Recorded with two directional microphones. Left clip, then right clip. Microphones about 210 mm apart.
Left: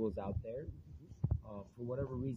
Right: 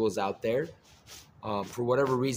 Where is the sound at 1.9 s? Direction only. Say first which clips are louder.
Right 16 dB; 15° right (ahead or behind).